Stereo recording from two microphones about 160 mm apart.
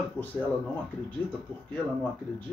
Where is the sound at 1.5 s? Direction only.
10° left (ahead or behind).